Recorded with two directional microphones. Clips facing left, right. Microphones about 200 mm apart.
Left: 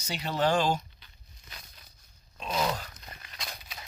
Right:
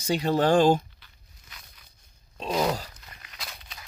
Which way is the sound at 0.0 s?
45° right (ahead or behind).